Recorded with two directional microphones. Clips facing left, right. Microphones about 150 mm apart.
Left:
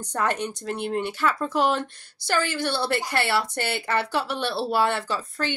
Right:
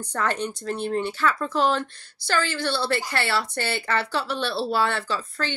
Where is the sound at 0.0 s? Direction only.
15° left (ahead or behind).